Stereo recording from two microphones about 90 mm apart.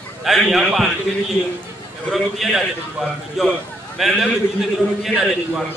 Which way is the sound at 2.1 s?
Centre (ahead or behind).